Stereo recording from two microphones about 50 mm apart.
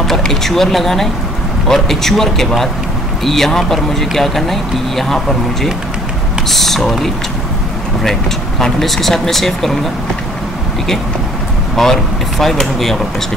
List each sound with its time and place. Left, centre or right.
0.1 s speech: centre
11.7 s speech: centre